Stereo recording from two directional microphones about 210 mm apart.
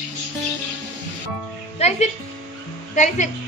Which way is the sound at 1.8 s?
30° left (ahead or behind).